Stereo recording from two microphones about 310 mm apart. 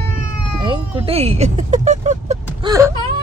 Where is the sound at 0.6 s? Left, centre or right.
Centre.